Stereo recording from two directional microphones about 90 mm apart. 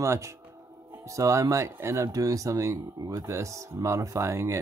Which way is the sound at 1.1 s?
35° right (ahead or behind).